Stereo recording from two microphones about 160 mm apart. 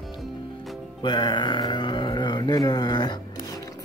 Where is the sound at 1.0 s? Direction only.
30° left (ahead or behind).